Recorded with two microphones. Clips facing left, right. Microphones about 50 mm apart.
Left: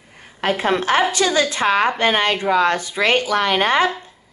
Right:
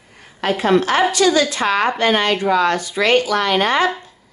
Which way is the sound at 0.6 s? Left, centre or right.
Left.